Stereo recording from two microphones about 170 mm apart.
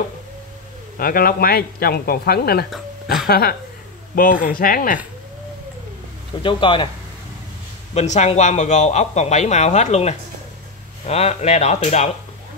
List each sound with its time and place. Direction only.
0.9 s speech: 55° left (ahead or behind)
2.7 s speech: centre (ahead or behind)
3.3 s speech: 65° left (ahead or behind)
4.1 s speech: 55° left (ahead or behind)
6.4 s speech: 30° left (ahead or behind)
7.9 s a man's voice: 40° left (ahead or behind)